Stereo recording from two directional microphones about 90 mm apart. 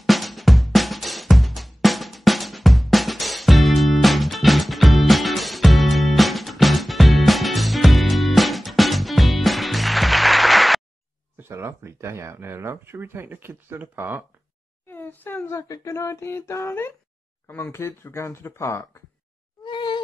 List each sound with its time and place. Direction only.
0.0 s music: centre (ahead or behind)
11.3 s speech: 30° right (ahead or behind)
14.9 s a child's voice: 20° left (ahead or behind)
15.5 s speech: 35° left (ahead or behind)
19.6 s a sound: 60° left (ahead or behind)